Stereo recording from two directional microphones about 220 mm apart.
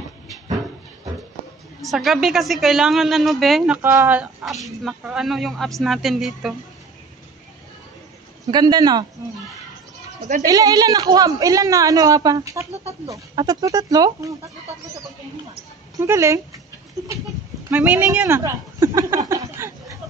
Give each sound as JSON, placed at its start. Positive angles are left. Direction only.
{"t": 1.8, "sound": "a woman's voice", "side_deg": 0}
{"t": 8.5, "sound": "speech", "side_deg": -20}
{"t": 10.4, "sound": "a woman's voice", "side_deg": -15}
{"t": 16.0, "sound": "a woman's voice", "side_deg": -15}
{"t": 17.6, "sound": "a woman's voice", "side_deg": -10}
{"t": 19.2, "sound": "a sound", "side_deg": -15}